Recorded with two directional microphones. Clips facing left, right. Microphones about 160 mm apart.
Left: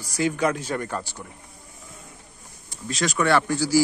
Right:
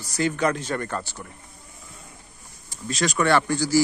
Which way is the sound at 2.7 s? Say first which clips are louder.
Right 1 dB; centre (ahead or behind).